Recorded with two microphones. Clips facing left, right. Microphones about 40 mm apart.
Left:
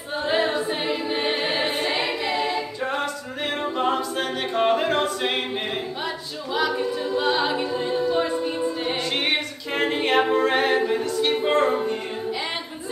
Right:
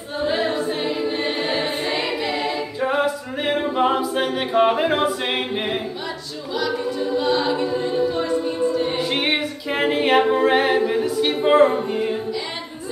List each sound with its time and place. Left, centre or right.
0.2 s choir: centre
2.8 s a capella: centre
7.2 s a capella: centre
8.2 s music: centre
8.9 s a capella: centre